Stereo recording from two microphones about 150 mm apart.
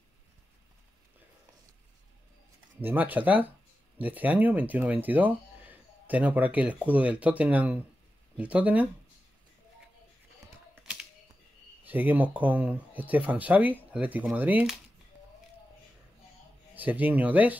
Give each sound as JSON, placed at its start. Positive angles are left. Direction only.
{"t": 2.8, "sound": "speech", "side_deg": -10}
{"t": 11.8, "sound": "speech", "side_deg": -10}
{"t": 16.7, "sound": "speech", "side_deg": -10}